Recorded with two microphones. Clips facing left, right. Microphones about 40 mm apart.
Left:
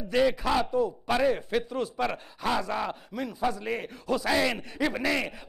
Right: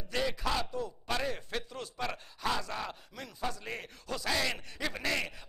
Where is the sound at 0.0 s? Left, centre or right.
Centre.